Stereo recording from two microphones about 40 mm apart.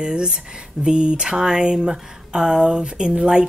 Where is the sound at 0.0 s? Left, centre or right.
Right.